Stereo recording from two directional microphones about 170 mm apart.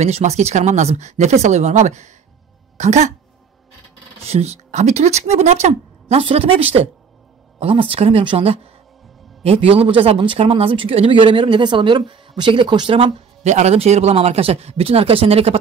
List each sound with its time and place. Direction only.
0.0 s speech: 40° right (ahead or behind)
4.2 s speech: 40° right (ahead or behind)